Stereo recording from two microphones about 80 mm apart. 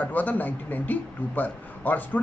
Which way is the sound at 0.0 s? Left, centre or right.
Left.